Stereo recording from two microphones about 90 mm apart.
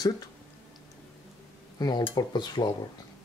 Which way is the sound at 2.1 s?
50° left (ahead or behind).